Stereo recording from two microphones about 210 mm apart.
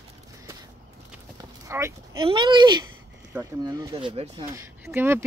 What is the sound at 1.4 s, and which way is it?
Clip-clop, 15° right (ahead or behind).